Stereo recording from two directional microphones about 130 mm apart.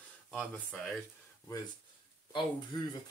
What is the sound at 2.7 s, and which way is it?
Speech, 30° left (ahead or behind).